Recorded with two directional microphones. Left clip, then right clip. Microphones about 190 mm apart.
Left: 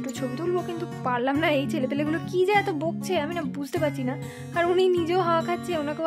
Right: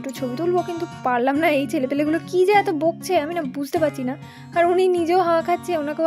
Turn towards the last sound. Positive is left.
turn(degrees=-20)  # may be behind; listen again after turning